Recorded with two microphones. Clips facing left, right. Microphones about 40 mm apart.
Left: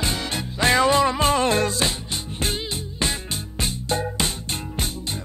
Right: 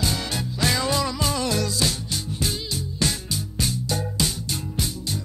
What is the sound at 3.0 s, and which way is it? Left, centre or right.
Music, left.